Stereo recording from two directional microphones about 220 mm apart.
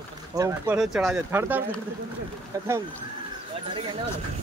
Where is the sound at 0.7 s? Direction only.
Centre (ahead or behind).